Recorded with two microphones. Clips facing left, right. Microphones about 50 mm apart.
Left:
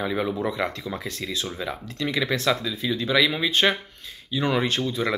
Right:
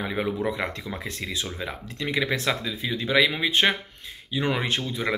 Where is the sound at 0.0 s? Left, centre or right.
Right.